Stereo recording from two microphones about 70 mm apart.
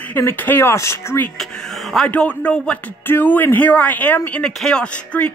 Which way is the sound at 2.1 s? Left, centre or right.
Centre.